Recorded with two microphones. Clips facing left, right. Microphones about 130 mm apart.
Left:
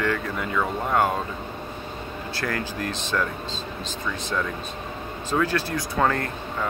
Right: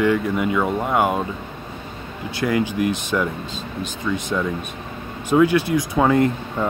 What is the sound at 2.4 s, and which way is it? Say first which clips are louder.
Speech: right 9 dB; 15° right (ahead or behind).